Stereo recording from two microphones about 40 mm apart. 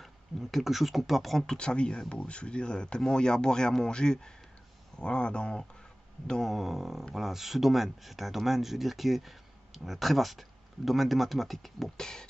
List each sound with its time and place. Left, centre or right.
0.0 s speech: centre
1.4 s speech: left
6.2 s music: centre
6.5 s speech: centre
12.0 s music: centre